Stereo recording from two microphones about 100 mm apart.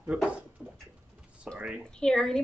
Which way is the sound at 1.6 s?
10° right (ahead or behind).